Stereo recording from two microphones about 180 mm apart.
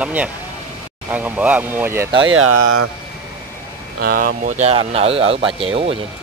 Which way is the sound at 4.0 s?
55° right (ahead or behind).